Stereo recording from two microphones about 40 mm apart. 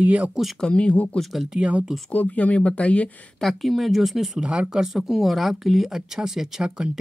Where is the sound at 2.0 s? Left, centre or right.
Left.